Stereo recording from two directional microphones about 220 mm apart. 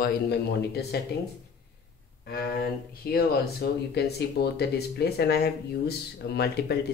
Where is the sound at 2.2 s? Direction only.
45° left (ahead or behind).